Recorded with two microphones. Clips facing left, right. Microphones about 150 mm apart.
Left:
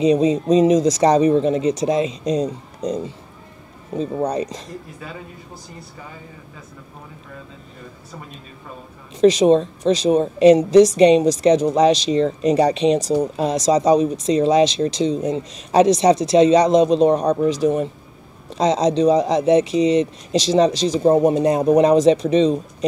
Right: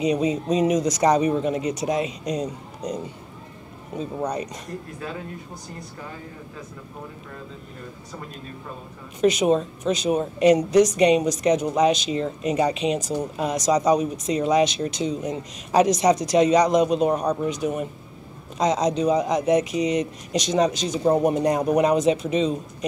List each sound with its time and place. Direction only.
0.0 s speech: 30° left (ahead or behind)
4.0 s speech: 30° left (ahead or behind)
9.2 s a woman's voice: 30° left (ahead or behind)